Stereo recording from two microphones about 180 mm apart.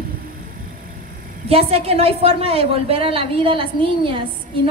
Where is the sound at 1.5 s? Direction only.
35° right (ahead or behind).